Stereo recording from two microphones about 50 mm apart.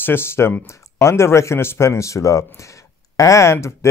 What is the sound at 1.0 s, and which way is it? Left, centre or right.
Speech, left.